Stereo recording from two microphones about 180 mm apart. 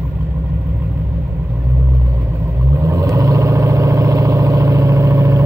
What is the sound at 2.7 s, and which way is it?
Vehicle, 20° right (ahead or behind).